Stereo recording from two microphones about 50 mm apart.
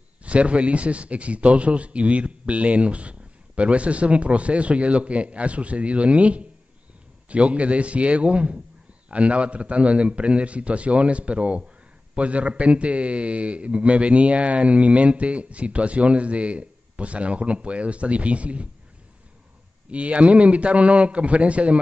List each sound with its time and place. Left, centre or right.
0.2 s a man's voice: right
19.9 s a man's voice: right